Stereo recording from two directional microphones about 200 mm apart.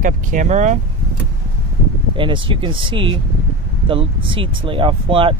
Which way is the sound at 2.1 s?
25° right (ahead or behind).